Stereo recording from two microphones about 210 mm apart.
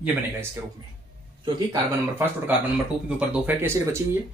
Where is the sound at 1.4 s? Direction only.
15° right (ahead or behind).